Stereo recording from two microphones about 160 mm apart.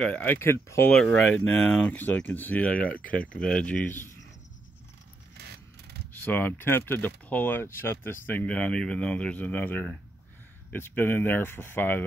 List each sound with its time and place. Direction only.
0.0 s speech: 10° left (ahead or behind)
5.4 s a sound: 90° right
6.2 s speech: 10° left (ahead or behind)